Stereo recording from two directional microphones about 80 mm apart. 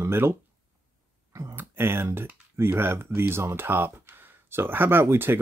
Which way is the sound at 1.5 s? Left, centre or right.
Right.